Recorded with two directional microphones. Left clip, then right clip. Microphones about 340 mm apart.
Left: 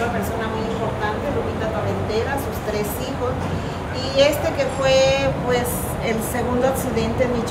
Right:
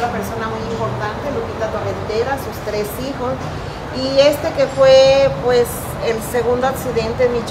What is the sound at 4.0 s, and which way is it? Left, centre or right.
A woman's voice, right.